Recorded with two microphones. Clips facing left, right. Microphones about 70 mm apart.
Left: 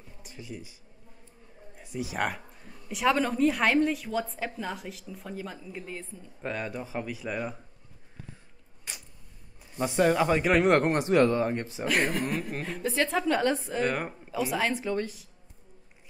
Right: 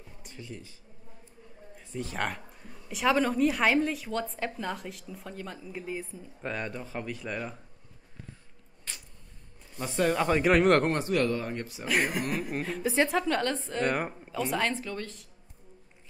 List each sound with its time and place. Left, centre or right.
0.2 s speech: centre
1.8 s speech: centre
8.9 s a sound: centre
9.8 s speech: centre
10.9 s speech: left
11.8 s speech: centre
13.4 s speech: centre
14.8 s speech: left